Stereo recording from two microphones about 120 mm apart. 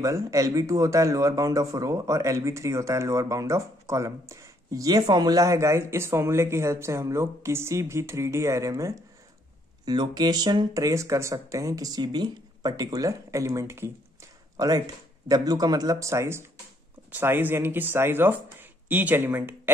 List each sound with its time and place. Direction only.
0.0 s speech: 25° right (ahead or behind)
9.8 s speech: 35° right (ahead or behind); by 19.7 s 20° right (ahead or behind)